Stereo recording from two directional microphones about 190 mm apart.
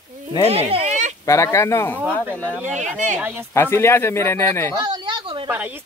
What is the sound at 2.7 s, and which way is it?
Speech, 40° right (ahead or behind).